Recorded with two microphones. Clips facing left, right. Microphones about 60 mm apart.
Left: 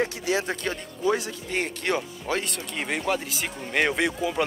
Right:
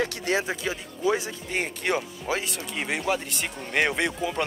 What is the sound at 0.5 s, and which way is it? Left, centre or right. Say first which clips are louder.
Speech: even; centre.